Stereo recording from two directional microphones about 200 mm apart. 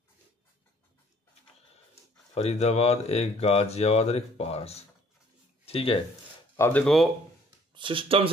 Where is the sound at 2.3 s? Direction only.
30° left (ahead or behind).